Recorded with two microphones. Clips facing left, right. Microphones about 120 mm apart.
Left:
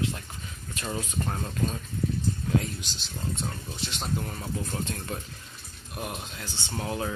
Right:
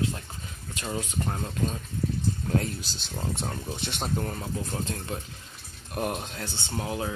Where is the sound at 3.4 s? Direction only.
55° right (ahead or behind).